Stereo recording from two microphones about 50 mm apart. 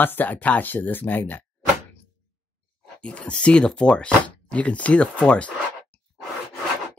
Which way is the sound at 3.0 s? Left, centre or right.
Left.